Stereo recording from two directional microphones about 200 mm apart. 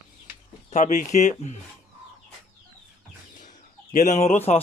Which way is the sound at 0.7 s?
40° left (ahead or behind).